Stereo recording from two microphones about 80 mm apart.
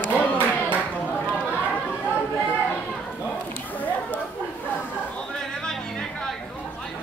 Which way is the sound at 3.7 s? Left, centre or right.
Centre.